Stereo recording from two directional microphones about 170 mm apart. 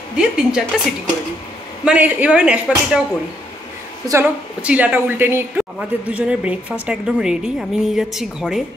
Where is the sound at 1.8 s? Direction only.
10° right (ahead or behind).